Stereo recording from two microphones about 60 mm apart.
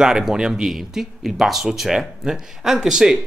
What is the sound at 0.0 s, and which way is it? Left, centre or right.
Speech, centre.